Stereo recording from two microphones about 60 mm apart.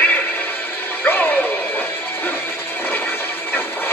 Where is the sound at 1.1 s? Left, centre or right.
Left.